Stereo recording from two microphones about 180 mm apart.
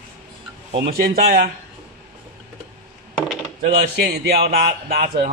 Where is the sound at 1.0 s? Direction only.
60° right (ahead or behind).